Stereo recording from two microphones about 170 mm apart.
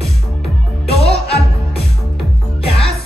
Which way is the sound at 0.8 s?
35° left (ahead or behind).